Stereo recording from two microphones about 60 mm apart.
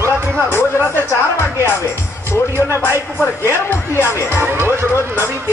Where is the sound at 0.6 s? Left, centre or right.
Left.